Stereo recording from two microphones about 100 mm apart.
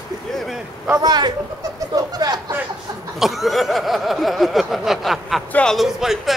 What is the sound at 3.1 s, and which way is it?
Speech, centre (ahead or behind).